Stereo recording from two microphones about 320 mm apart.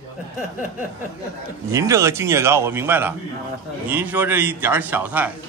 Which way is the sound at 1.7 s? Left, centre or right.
Centre.